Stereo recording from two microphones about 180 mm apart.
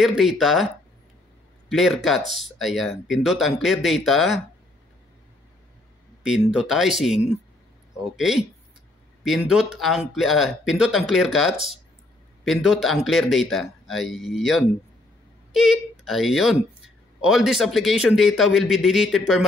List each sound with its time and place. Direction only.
0.0 s speech: centre (ahead or behind)
1.7 s speech: centre (ahead or behind)
6.2 s speech: 5° right (ahead or behind)
8.2 s speech: centre (ahead or behind)
15.5 s speech: 5° right (ahead or behind)